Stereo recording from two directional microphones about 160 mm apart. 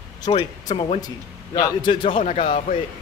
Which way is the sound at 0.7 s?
35° left (ahead or behind).